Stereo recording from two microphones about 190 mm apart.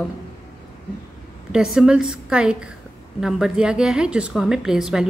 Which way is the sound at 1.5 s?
5° right (ahead or behind).